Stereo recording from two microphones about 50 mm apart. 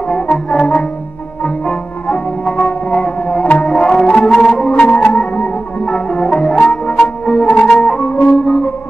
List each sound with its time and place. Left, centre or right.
0.1 s music: centre
4.7 s music: left